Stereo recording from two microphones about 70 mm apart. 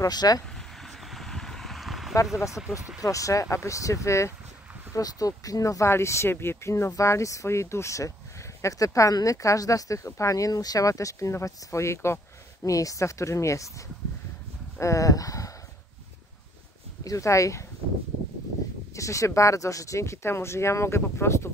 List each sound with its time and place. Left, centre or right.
0.0 s speech: left
0.8 s a sound: centre
2.3 s speech: left
4.9 s speech: left
5.9 s speech: left
12.6 s speech: left
17.0 s speech: left
18.9 s speech: left